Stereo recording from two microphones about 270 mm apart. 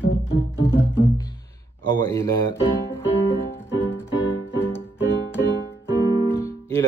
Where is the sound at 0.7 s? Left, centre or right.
Centre.